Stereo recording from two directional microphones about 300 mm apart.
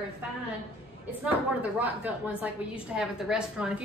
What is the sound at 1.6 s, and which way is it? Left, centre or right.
A woman's voice, centre.